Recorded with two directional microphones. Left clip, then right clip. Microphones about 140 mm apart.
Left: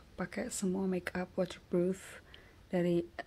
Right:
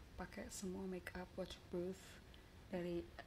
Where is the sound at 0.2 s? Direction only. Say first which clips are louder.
Left 13 dB; 35° right (ahead or behind).